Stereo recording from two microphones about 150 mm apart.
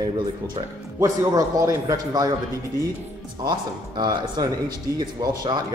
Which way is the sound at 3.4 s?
30° right (ahead or behind).